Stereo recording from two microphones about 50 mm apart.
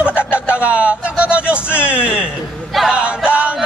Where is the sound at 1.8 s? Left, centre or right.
Right.